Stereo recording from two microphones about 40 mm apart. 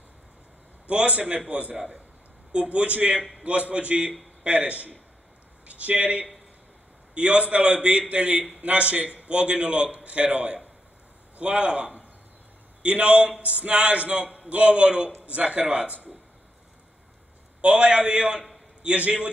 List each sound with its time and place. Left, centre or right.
0.8 s a man's voice: right
17.6 s a man's voice: right